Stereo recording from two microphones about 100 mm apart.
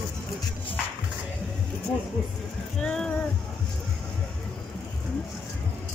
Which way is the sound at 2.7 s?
10° left (ahead or behind).